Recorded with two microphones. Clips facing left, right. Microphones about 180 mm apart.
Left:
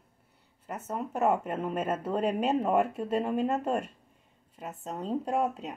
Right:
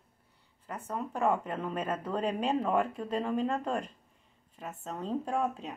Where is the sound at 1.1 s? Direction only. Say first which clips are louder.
Left 3 dB; 5° left (ahead or behind).